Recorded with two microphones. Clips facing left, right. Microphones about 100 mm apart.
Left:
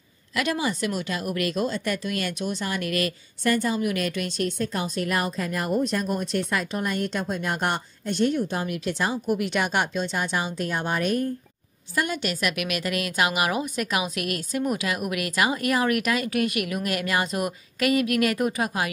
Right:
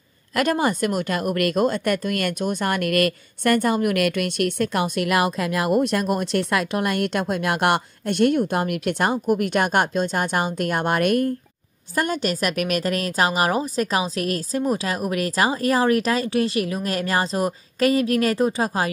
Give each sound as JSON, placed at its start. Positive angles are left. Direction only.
{"t": 0.3, "sound": "a woman's voice", "side_deg": -50}
{"t": 11.9, "sound": "speech", "side_deg": -40}